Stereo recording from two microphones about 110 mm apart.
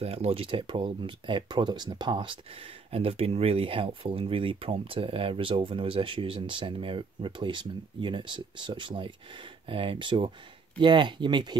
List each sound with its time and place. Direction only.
0.0 s speech: 65° right (ahead or behind); by 2.3 s 45° right (ahead or behind)
2.5 s speech: 60° right (ahead or behind); by 11.5 s 45° right (ahead or behind)